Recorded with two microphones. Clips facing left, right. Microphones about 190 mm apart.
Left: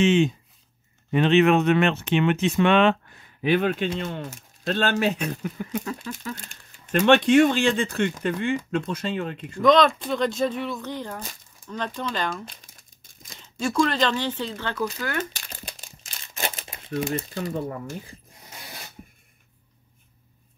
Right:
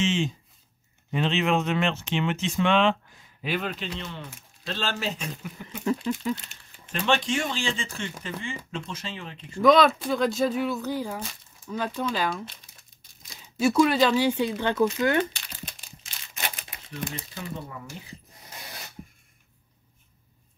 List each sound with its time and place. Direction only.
0.0 s speech: 60° left (ahead or behind)
5.9 s speech: 20° right (ahead or behind)
6.3 s speech: 50° left (ahead or behind)
9.6 s speech: 5° right (ahead or behind)
13.6 s speech: 10° right (ahead or behind)
16.0 s a sound: 45° left (ahead or behind)
17.3 s speech: 45° left (ahead or behind)